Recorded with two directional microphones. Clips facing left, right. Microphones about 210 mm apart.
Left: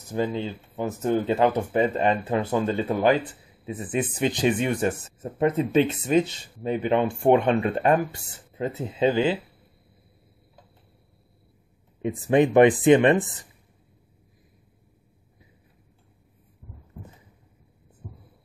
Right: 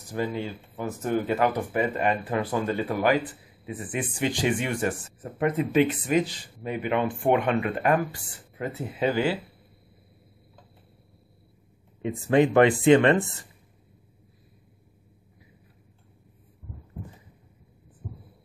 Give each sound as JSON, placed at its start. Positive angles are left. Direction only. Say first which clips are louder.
{"t": 0.1, "sound": "speech", "louder": "left 3 dB", "side_deg": 20}
{"t": 12.0, "sound": "speech", "louder": "left 1 dB", "side_deg": 20}